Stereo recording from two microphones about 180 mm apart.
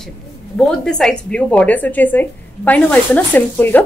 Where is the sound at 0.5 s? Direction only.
5° left (ahead or behind).